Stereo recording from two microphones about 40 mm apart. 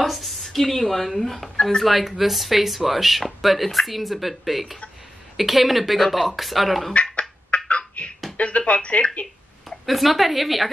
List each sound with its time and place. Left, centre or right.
0.0 s speech: centre
6.9 s a sound: left
8.4 s speech: left
9.7 s speech: centre